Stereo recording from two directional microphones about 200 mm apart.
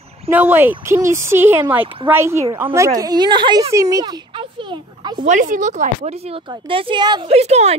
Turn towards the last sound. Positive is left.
turn(degrees=-30)  # may be behind; listen again after turning